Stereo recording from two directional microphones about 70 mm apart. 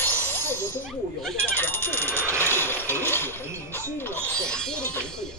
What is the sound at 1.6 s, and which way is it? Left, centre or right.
Telephone bell ringing, left.